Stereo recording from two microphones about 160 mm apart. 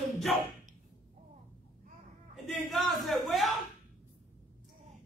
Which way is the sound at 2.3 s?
Centre (ahead or behind).